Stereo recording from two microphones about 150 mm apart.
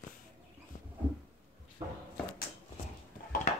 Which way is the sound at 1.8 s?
25° right (ahead or behind).